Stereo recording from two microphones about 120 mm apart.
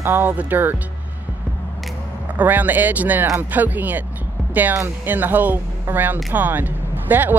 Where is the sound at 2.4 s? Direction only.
15° right (ahead or behind).